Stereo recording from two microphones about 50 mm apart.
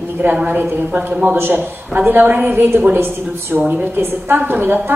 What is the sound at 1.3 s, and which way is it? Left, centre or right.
A woman's voice, right.